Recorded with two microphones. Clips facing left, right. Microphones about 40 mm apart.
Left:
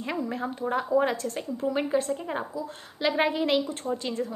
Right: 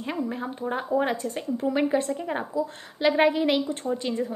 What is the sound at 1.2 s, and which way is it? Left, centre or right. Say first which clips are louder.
Speech: right 2 dB; right.